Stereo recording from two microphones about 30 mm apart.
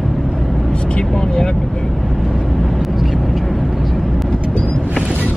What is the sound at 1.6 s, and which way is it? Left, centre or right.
Speech, centre.